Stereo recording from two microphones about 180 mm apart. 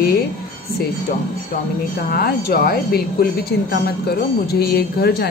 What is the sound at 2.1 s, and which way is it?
Speech, 60° left (ahead or behind).